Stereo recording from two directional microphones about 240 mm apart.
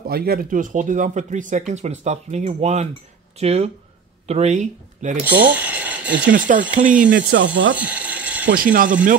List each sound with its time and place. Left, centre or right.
0.0 s speech: right
5.4 s a sound: centre
6.2 s speech: right
7.3 s speech: right
7.7 s a sound: centre
8.7 s speech: right